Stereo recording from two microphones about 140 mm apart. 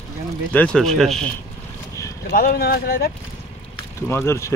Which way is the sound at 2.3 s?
90° left.